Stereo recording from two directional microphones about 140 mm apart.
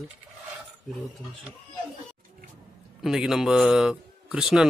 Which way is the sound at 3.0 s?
5° right (ahead or behind).